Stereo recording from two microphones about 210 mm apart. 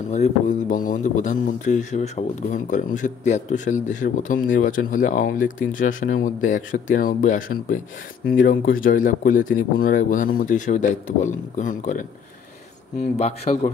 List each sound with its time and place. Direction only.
0.1 s speech: 35° left (ahead or behind)
13.1 s speech: 30° left (ahead or behind)